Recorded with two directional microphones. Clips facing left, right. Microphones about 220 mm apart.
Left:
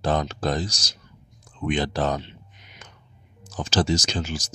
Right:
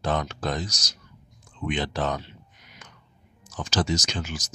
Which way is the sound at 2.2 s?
25° left (ahead or behind).